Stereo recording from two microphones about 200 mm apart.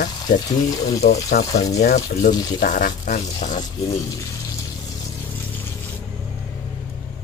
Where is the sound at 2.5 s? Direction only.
40° left (ahead or behind).